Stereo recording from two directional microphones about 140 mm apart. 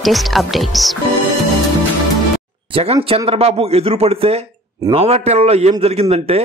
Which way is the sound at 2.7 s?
45° right (ahead or behind).